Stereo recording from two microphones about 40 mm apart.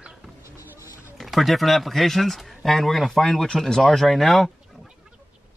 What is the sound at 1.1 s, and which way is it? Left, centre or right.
Speech, centre.